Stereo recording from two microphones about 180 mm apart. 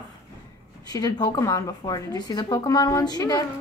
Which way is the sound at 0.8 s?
20° left (ahead or behind).